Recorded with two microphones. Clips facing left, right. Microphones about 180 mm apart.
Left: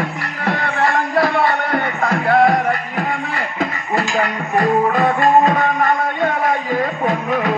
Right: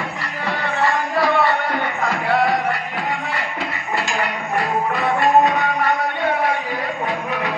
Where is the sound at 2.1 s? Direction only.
50° left (ahead or behind).